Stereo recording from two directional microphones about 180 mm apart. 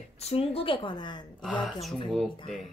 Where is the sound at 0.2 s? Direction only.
35° left (ahead or behind).